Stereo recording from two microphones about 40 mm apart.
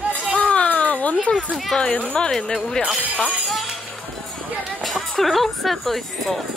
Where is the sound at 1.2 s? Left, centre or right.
Left.